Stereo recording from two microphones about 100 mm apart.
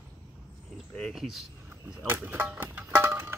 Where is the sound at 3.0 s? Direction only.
20° right (ahead or behind).